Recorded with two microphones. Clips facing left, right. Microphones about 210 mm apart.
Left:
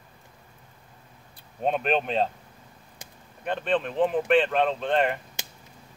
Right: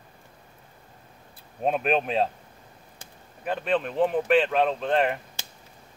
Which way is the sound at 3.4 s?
5° right (ahead or behind).